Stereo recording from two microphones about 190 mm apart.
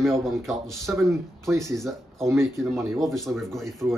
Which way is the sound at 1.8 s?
Centre (ahead or behind).